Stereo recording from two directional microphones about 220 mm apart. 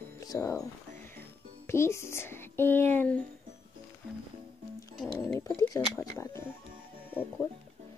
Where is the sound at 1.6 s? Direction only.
10° left (ahead or behind).